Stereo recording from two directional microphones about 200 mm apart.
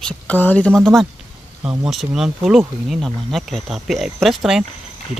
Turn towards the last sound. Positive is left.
turn(degrees=0)  # may be behind; listen again after turning